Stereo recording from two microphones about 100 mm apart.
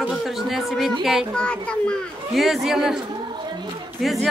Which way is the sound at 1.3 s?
10° left (ahead or behind).